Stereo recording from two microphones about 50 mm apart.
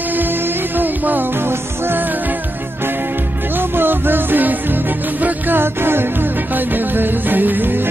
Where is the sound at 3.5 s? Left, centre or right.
Right.